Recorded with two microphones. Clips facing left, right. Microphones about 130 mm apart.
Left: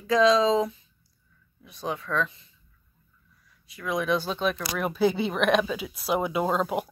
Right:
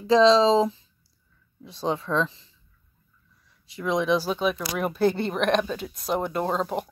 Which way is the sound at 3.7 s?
25° right (ahead or behind).